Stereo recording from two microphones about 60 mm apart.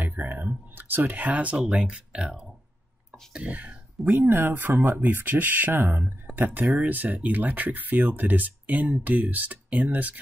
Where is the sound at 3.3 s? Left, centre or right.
Right.